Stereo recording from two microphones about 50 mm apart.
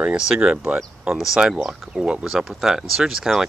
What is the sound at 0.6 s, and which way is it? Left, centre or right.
Speech, right.